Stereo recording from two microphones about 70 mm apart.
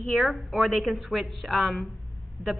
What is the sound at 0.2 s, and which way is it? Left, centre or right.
A woman's voice, centre.